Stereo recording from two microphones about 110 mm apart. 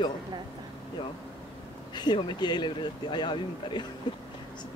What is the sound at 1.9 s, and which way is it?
Speech, 40° left (ahead or behind).